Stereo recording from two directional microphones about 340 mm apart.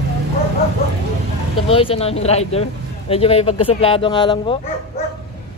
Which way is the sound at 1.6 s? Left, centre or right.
Centre.